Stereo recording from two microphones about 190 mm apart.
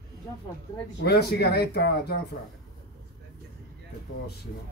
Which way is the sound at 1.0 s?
60° left (ahead or behind).